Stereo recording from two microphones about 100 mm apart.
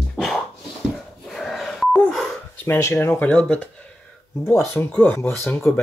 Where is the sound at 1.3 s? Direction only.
Centre (ahead or behind).